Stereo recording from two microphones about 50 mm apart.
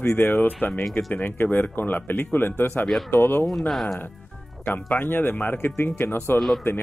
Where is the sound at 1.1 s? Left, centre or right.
Left.